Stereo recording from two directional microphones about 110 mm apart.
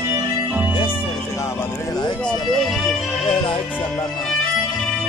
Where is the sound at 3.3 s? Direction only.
50° left (ahead or behind).